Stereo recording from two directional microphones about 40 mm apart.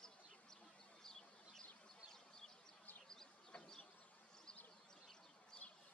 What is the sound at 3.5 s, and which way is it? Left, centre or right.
Bee, centre.